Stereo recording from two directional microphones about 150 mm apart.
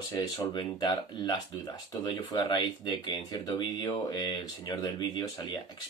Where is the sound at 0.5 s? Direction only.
30° left (ahead or behind).